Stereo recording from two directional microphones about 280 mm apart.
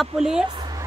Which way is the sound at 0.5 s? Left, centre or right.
Centre.